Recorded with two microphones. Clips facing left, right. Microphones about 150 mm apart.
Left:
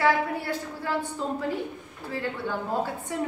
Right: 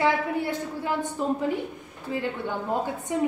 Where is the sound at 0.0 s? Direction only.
20° right (ahead or behind).